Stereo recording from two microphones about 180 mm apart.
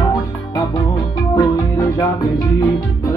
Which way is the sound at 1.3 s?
20° left (ahead or behind).